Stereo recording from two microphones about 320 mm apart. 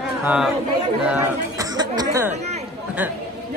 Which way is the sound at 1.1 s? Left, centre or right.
Centre.